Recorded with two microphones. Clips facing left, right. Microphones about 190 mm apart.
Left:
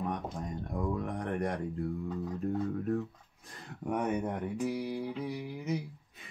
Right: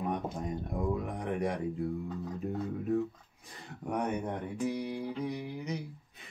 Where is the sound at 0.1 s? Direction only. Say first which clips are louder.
Right 2 dB; 5° right (ahead or behind).